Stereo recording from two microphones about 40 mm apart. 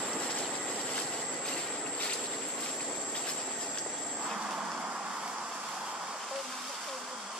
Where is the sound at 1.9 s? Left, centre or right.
Left.